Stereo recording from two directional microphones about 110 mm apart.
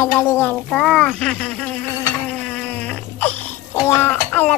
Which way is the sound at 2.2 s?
10° left (ahead or behind).